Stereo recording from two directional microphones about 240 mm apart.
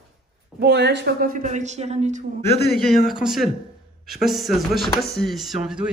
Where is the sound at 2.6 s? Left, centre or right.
Left.